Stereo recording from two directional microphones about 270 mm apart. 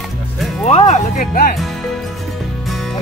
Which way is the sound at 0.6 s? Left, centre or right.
Left.